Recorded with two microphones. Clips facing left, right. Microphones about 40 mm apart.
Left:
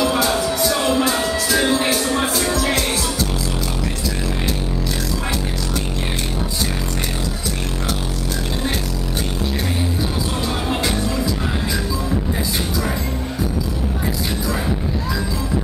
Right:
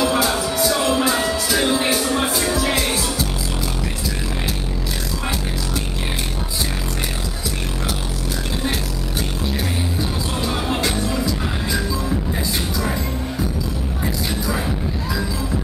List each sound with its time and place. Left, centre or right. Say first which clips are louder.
0.0 s music: left 1 dB; centre
10.4 s music: right 2 dB; centre